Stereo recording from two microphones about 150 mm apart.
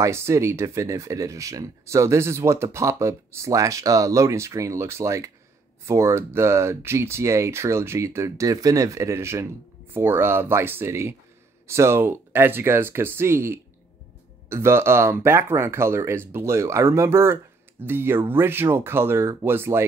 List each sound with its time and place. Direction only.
0.0 s speech: 20° right (ahead or behind)